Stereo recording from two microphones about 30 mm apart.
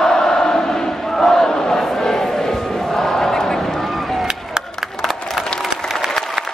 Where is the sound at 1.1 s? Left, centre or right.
Centre.